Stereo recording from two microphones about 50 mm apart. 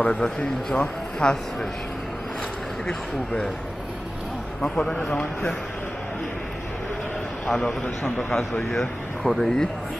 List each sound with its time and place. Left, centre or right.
0.0 s speech: left
4.6 s speech: centre
7.4 s speech: left
8.7 s speech: centre